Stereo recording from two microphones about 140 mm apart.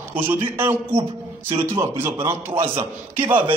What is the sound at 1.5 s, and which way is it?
Speech, 40° right (ahead or behind).